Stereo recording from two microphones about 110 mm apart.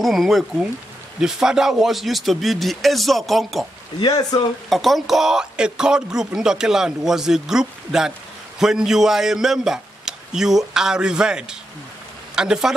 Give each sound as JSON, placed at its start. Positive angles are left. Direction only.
{"t": 0.0, "sound": "speech", "side_deg": 0}
{"t": 4.0, "sound": "speech", "side_deg": 35}
{"t": 4.6, "sound": "speech", "side_deg": 0}